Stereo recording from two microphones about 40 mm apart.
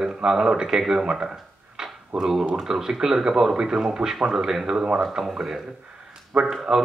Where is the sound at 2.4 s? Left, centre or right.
Right.